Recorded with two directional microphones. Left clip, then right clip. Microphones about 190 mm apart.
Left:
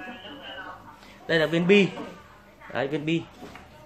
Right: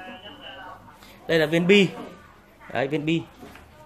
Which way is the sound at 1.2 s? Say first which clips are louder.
Right 2 dB; 30° right (ahead or behind).